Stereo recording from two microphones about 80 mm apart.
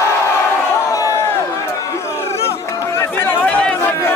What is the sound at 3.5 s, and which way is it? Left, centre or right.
Chatter, centre.